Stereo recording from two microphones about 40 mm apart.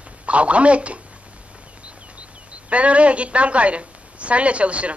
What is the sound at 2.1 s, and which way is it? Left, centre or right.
A woman's voice, right.